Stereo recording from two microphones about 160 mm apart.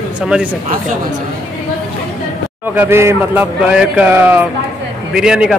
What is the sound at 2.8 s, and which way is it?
A man's voice, 15° right (ahead or behind).